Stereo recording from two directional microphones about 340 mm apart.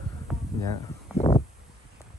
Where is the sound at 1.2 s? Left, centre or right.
Centre.